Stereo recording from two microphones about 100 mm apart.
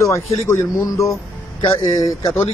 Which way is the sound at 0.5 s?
30° left (ahead or behind).